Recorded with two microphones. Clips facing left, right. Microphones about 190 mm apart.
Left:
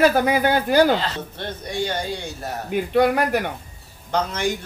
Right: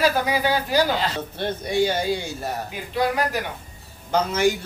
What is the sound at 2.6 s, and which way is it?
Speech, 60° left (ahead or behind).